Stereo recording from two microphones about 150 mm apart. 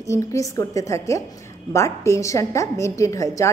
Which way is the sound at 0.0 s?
20° left (ahead or behind).